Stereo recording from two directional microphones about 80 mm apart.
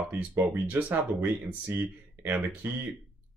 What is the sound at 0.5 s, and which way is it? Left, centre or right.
Speech, right.